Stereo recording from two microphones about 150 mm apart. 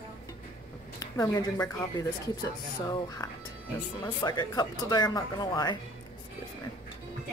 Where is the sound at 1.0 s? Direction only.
20° left (ahead or behind).